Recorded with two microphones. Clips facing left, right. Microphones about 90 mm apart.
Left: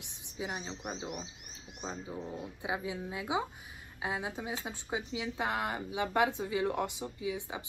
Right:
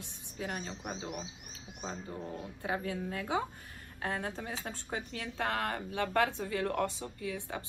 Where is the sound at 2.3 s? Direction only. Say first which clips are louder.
Right 1 dB; 10° left (ahead or behind).